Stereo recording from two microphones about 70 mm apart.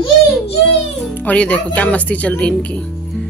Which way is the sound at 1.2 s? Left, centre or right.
Centre.